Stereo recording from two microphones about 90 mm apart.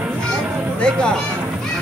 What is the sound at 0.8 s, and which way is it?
Speech, 10° left (ahead or behind).